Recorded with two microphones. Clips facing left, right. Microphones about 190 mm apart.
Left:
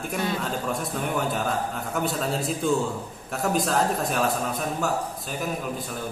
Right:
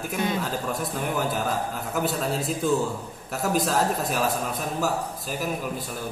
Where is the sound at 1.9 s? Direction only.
Centre (ahead or behind).